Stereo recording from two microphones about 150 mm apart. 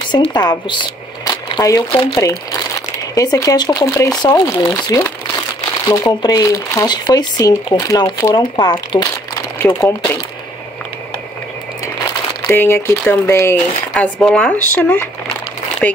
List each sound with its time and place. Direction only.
0.1 s speech: 30° left (ahead or behind)
3.2 s speech: 25° left (ahead or behind)
9.6 s speech: 15° left (ahead or behind)
12.5 s speech: 15° left (ahead or behind)
13.9 s speech: 5° left (ahead or behind)